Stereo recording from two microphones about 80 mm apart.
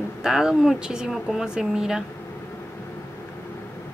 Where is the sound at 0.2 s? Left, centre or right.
Centre.